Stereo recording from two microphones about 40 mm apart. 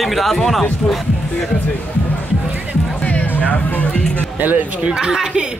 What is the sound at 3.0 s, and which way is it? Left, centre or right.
Music, left.